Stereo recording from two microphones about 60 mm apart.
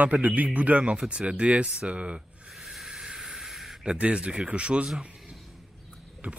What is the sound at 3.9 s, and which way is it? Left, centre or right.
Speech, centre.